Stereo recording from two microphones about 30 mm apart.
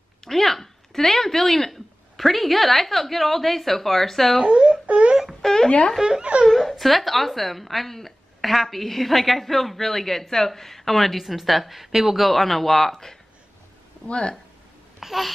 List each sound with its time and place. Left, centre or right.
0.2 s a sound: centre
1.7 s a woman's voice: centre
4.6 s a sound: right
5.4 s a sound: centre
6.0 s speech: right
6.7 s a woman's voice: centre
12.3 s speech: centre
14.0 s speech: left
15.0 s babbling: centre